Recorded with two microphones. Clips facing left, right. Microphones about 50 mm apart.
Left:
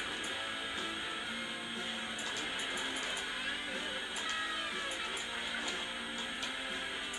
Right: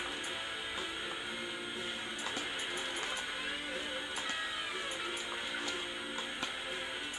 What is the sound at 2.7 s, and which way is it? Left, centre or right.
Music, centre.